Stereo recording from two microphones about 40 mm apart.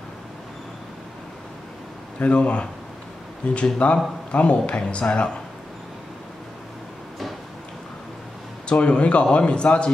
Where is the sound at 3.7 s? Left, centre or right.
Left.